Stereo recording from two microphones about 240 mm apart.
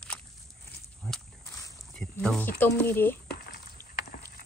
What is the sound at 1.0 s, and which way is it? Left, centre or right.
Pig, centre.